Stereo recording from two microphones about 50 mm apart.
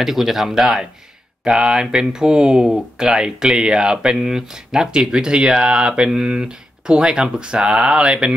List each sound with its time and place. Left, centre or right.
0.0 s speech: centre